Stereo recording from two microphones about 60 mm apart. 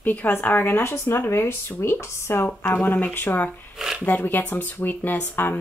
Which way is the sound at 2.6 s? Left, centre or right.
Left.